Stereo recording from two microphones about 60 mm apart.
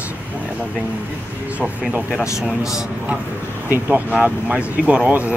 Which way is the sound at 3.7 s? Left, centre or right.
Right.